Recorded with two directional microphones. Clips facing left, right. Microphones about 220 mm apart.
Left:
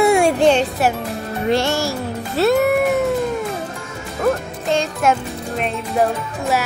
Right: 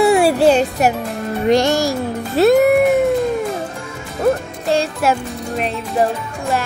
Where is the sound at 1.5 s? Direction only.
15° right (ahead or behind).